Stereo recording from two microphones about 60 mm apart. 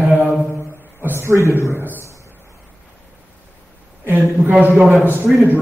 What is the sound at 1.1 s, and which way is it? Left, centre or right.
Speech, right.